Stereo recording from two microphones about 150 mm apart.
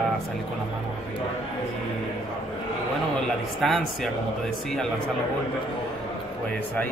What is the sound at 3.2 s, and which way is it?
Speech, centre (ahead or behind).